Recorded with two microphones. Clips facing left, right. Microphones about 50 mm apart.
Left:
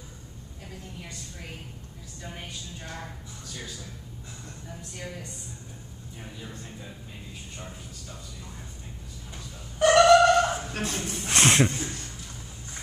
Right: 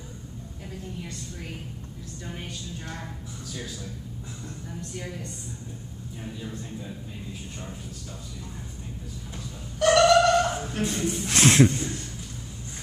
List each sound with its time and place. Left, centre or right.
2.2 s a woman's voice: centre
9.8 s a sound: centre
10.7 s speech: left
11.2 s a woman's voice: centre